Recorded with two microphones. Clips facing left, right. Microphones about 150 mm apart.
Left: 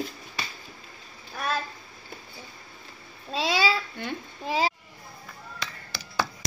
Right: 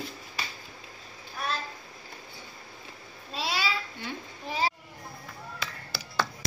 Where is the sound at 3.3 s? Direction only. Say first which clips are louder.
Left 6 dB; 90° left.